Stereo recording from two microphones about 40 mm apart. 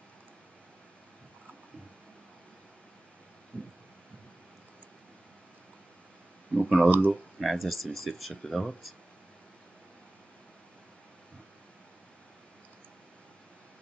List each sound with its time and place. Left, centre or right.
3.5 s heart sounds: left
6.5 s speech: centre
7.3 s speech: centre